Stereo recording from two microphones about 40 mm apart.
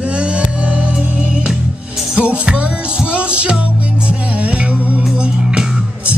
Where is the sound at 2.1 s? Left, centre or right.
Right.